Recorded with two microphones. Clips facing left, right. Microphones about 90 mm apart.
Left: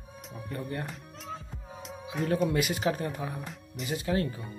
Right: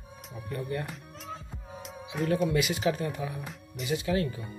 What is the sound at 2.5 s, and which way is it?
Speech, 45° left (ahead or behind).